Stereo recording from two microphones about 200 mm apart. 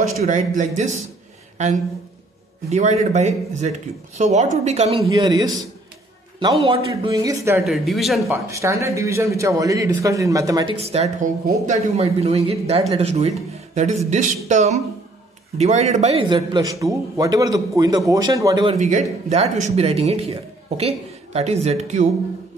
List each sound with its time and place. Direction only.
0.2 s a man's voice: 40° right (ahead or behind)
2.7 s a man's voice: 35° right (ahead or behind)
5.0 s a man's voice: 20° right (ahead or behind)
7.6 s speech: centre (ahead or behind)
8.3 s a man's voice: 15° right (ahead or behind)
18.8 s a man's voice: 40° right (ahead or behind)